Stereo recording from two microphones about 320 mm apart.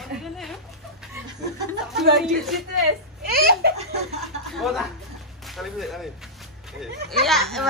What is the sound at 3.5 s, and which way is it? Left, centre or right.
Laughter, right.